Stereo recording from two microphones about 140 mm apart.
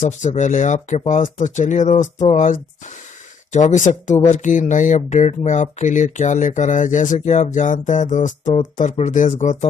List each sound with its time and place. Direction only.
0.0 s speech: 60° left (ahead or behind)